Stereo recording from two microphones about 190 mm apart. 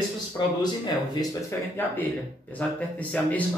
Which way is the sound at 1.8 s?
10° left (ahead or behind).